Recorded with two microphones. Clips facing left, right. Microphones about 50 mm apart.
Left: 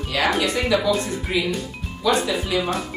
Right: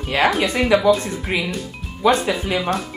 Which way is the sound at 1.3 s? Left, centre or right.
Right.